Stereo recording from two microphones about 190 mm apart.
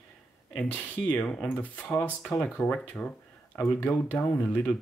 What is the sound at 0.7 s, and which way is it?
Speech, 10° left (ahead or behind).